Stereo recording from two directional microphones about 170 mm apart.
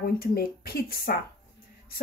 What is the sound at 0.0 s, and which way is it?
Speech, 65° left (ahead or behind).